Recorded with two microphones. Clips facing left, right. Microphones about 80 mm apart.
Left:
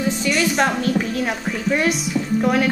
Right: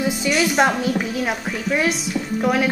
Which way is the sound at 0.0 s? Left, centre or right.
Centre.